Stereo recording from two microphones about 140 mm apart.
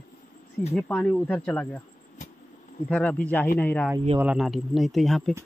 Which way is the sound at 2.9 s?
10° left (ahead or behind).